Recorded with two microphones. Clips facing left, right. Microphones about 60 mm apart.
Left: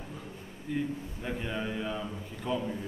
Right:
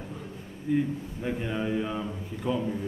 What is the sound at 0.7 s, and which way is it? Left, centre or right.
A man's voice, centre.